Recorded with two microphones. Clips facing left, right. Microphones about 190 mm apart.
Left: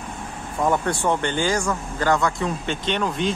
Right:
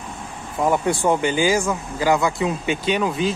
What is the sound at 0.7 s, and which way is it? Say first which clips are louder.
Speech: right 3 dB; 10° right (ahead or behind).